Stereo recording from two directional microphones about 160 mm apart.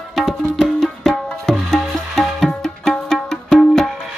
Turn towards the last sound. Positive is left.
turn(degrees=0)  # may be behind; listen again after turning